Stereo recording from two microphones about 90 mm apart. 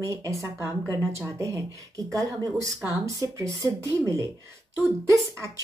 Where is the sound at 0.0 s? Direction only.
35° right (ahead or behind).